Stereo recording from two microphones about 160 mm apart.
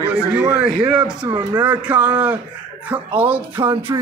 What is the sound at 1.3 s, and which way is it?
Speech, 25° right (ahead or behind).